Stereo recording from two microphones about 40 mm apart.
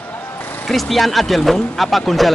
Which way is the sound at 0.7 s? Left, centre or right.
Centre.